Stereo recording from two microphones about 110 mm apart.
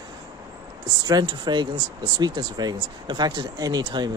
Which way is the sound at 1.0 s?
40° right (ahead or behind).